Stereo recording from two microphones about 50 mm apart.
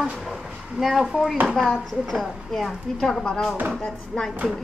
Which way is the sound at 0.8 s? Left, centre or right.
Centre.